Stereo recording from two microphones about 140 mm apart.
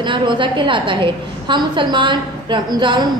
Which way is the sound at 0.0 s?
35° right (ahead or behind).